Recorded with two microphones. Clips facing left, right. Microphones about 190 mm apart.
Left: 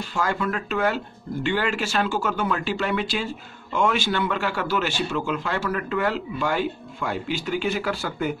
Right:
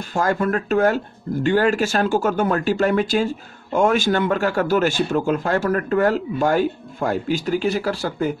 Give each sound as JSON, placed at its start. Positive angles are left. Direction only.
{"t": 0.0, "sound": "speech", "side_deg": -45}